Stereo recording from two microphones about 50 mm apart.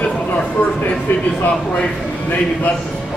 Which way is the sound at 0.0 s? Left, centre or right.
Left.